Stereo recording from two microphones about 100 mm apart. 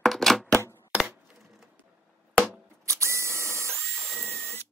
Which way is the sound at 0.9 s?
15° right (ahead or behind).